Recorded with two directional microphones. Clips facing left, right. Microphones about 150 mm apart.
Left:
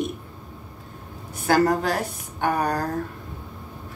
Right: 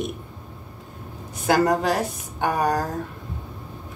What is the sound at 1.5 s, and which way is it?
Speech, 15° right (ahead or behind).